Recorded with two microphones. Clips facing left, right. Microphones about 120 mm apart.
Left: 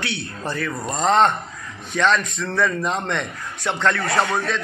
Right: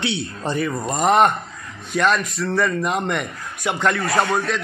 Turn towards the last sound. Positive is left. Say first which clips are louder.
# right 1 dB
turn(degrees=-5)  # may be behind; listen again after turning